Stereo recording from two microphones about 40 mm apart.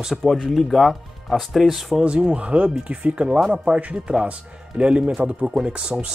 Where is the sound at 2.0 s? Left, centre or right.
Right.